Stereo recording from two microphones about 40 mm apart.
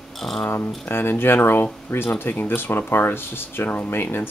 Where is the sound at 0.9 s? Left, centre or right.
Left.